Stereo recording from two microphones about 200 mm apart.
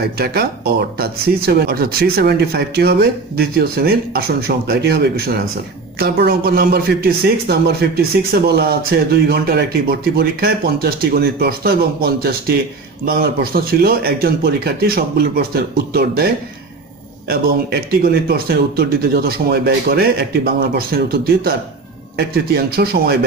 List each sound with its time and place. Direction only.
0.2 s a man's voice: 50° right (ahead or behind)
17.3 s a man's voice: 50° right (ahead or behind)